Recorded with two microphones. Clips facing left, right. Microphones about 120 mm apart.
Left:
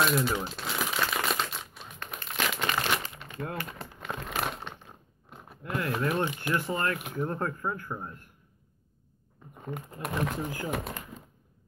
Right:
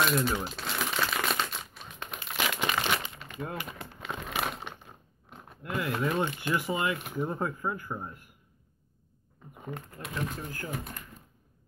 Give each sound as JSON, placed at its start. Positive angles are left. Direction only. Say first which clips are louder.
{"t": 0.0, "sound": "crumpling", "louder": "left 1 dB", "side_deg": 0}
{"t": 6.5, "sound": "speech", "louder": "even", "side_deg": -10}
{"t": 9.5, "sound": "a sound", "louder": "left 1 dB", "side_deg": -5}
{"t": 10.2, "sound": "speech", "louder": "left 4 dB", "side_deg": 85}